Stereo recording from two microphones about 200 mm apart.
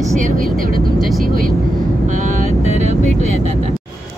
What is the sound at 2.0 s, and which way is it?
Vehicle, 40° right (ahead or behind).